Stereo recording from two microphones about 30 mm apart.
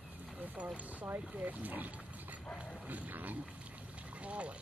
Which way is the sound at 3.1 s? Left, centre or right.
Right.